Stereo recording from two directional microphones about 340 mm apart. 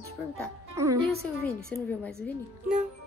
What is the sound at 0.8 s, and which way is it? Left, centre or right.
Speech, centre.